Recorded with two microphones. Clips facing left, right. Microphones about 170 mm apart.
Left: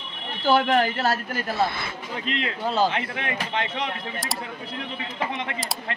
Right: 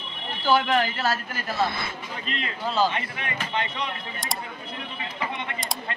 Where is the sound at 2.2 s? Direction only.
90° left.